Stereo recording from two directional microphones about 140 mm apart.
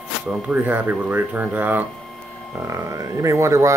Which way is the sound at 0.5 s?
10° right (ahead or behind).